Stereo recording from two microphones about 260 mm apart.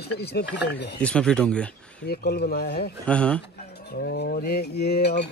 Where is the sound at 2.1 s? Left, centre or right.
Left.